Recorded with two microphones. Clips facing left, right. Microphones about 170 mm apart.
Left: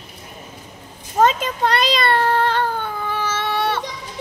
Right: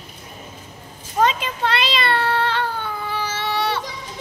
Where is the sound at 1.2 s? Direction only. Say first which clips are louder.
Left 3 dB; 45° left (ahead or behind).